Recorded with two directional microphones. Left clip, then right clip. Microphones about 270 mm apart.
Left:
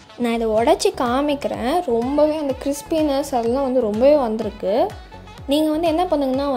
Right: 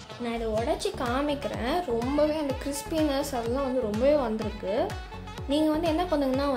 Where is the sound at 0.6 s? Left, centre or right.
Left.